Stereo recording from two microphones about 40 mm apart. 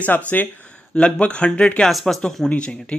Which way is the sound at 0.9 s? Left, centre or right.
Left.